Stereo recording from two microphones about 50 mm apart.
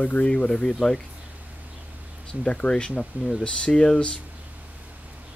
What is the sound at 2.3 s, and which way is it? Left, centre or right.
Speech, centre.